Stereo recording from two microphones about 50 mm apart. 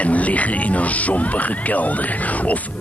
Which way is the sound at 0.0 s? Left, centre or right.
Left.